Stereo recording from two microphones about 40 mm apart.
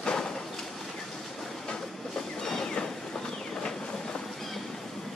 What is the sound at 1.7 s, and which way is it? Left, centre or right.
Vehicle, centre.